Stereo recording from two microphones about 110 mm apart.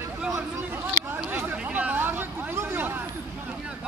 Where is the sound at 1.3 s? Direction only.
15° right (ahead or behind).